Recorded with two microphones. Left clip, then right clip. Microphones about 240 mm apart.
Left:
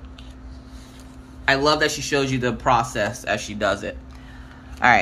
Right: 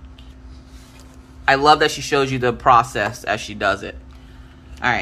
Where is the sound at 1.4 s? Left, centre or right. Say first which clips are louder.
Right 5 dB; centre.